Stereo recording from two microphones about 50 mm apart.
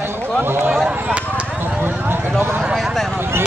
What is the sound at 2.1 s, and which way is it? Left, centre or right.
Speech, right.